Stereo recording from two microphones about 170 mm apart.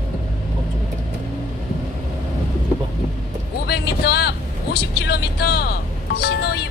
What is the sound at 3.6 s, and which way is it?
Vehicle, 70° left (ahead or behind).